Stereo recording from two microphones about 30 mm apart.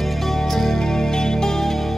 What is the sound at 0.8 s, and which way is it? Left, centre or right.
Music, centre.